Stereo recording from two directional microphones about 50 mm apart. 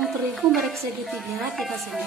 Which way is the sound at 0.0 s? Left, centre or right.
Centre.